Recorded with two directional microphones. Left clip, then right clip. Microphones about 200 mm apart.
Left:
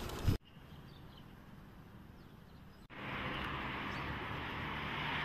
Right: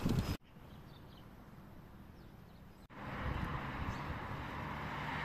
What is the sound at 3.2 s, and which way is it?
Vehicle, 65° right (ahead or behind).